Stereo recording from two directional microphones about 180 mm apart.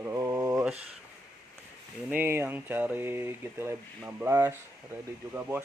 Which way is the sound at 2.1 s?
10° right (ahead or behind).